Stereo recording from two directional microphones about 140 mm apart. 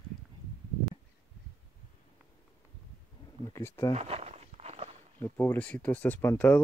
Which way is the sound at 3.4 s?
20° left (ahead or behind).